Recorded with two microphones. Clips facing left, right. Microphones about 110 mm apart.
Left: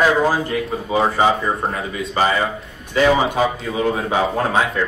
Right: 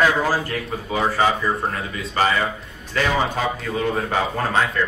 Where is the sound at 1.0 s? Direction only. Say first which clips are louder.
Left 3 dB; 25° left (ahead or behind).